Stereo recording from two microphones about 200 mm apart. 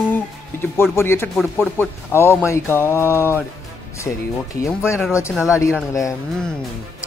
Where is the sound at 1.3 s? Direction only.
Centre (ahead or behind).